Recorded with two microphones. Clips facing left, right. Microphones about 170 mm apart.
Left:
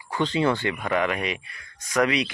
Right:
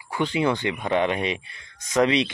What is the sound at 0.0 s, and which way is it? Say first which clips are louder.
Speech: even; 10° right (ahead or behind).